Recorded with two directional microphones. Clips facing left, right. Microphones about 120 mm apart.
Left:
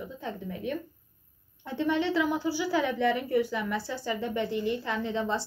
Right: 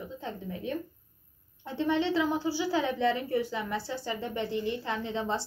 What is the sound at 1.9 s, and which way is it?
A woman's voice, 25° right (ahead or behind).